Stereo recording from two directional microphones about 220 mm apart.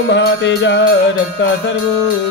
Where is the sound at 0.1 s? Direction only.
55° left (ahead or behind).